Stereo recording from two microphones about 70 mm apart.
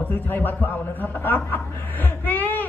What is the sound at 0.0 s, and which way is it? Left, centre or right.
A woman's voice, left.